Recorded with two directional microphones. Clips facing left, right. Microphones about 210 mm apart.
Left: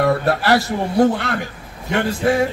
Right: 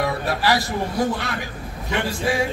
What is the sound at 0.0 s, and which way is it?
A man's voice, 55° left (ahead or behind).